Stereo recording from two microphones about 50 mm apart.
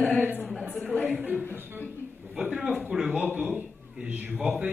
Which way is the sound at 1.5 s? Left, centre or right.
Right.